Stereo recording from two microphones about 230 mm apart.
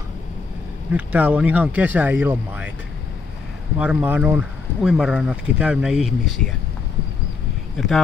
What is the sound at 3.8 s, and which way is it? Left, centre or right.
Speech, centre.